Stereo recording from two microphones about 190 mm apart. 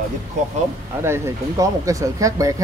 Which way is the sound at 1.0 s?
15° right (ahead or behind).